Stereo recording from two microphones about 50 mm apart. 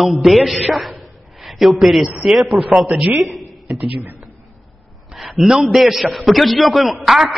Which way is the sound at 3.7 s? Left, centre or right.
Right.